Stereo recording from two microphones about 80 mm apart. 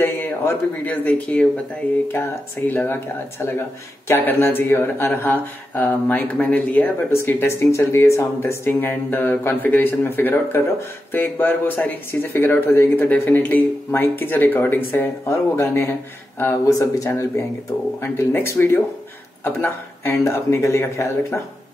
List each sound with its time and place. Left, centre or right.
0.0 s speech: left
2.7 s speech: left
16.6 s speech: left